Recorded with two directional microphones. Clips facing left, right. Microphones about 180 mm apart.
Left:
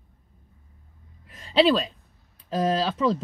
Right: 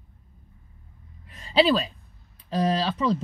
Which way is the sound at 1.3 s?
Centre (ahead or behind).